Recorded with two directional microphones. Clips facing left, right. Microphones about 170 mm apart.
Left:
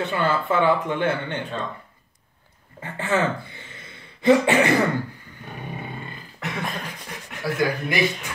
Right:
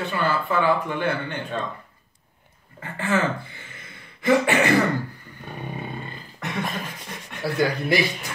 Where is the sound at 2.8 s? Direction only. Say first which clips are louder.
Left 1 dB; 20° left (ahead or behind).